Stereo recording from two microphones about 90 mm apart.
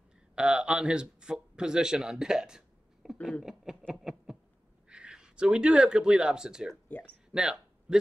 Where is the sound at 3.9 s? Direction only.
5° right (ahead or behind).